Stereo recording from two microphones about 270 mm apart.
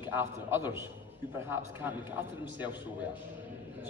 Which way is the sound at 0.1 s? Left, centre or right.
Centre.